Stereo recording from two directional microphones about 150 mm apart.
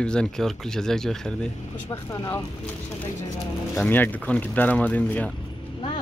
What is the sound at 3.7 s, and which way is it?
Speech, 10° left (ahead or behind).